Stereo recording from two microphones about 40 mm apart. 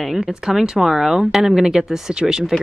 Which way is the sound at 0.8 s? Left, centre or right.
Centre.